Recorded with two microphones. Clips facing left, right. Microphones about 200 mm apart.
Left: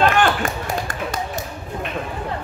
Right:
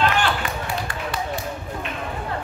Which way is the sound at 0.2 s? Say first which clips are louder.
Left 5 dB; 45° left (ahead or behind).